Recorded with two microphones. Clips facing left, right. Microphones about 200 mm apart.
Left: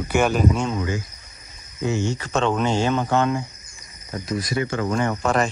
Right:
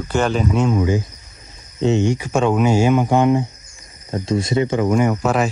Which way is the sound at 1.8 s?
20° right (ahead or behind).